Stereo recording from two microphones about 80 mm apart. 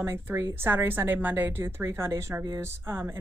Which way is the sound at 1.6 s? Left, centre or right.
Right.